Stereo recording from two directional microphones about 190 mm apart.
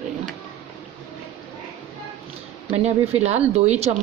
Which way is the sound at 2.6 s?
35° right (ahead or behind).